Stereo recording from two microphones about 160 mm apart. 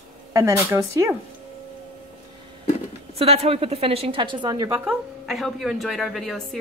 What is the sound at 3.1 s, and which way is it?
A woman's voice, 40° right (ahead or behind).